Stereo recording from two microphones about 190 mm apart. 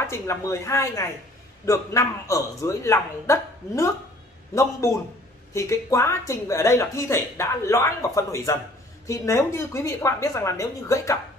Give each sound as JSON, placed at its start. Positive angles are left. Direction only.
{"t": 0.0, "sound": "speech", "side_deg": 15}